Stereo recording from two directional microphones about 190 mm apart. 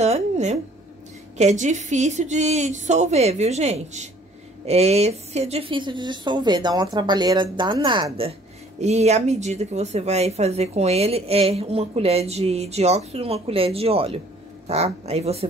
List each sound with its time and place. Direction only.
0.0 s a woman's voice: 35° right (ahead or behind)
8.7 s speech: 35° right (ahead or behind)